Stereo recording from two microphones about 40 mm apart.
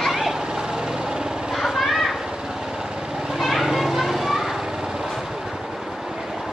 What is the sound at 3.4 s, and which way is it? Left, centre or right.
Children playing, centre.